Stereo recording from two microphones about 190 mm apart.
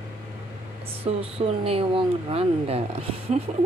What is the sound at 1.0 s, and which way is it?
Speech, 30° right (ahead or behind).